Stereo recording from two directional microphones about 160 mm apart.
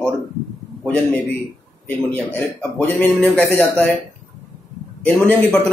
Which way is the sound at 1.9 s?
10° left (ahead or behind).